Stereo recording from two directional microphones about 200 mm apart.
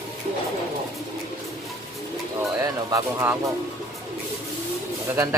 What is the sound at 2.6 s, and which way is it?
Speech, 15° right (ahead or behind).